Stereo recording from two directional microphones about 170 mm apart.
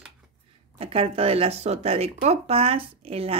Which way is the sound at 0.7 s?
35° right (ahead or behind).